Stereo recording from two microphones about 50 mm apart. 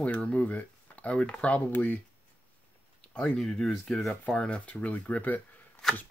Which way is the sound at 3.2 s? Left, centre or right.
Centre.